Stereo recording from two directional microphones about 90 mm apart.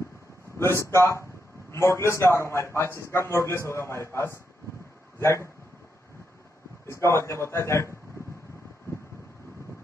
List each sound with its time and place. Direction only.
0.6 s a man's voice: 30° left (ahead or behind)
6.9 s a man's voice: 30° left (ahead or behind)